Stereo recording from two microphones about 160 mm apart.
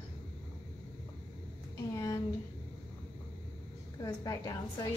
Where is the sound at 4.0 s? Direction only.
25° left (ahead or behind).